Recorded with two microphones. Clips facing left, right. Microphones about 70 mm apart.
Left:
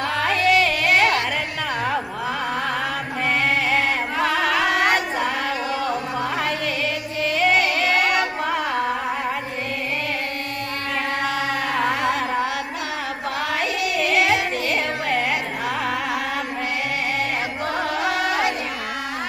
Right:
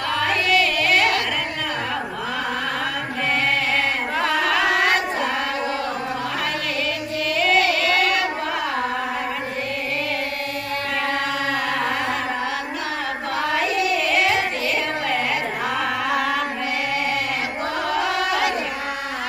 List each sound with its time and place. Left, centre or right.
0.2 s yodeling: left
3.7 s music: centre
7.2 s music: left
14.2 s music: left